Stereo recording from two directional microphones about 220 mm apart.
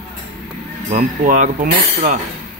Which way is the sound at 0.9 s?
35° right (ahead or behind).